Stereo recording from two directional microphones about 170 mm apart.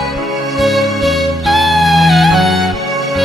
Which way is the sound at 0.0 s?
Centre (ahead or behind).